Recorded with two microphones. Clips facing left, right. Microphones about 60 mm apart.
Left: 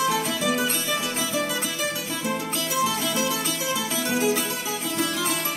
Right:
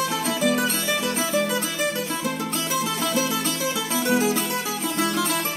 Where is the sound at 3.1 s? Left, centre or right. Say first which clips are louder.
Right 2 dB; right.